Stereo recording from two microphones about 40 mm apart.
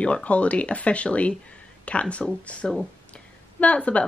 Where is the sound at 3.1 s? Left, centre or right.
Left.